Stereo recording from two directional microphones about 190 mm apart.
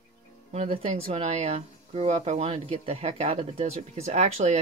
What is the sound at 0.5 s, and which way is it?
Speech, 30° right (ahead or behind).